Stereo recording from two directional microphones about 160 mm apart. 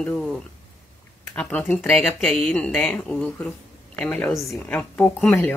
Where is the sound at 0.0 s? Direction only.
5° left (ahead or behind).